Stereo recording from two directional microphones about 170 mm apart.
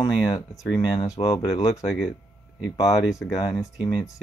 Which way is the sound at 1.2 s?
35° left (ahead or behind).